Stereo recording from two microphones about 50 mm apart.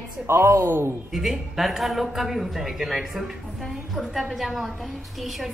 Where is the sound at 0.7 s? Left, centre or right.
Right.